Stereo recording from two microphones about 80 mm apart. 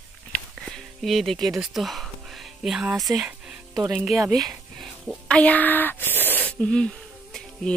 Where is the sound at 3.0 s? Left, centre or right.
Centre.